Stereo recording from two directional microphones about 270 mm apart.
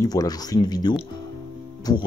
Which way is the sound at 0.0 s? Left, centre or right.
Centre.